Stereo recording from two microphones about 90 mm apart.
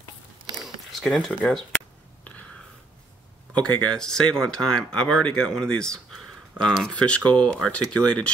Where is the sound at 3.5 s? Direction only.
5° left (ahead or behind).